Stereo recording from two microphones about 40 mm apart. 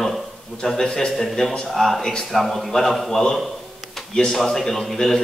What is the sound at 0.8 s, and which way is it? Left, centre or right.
A man's voice, centre.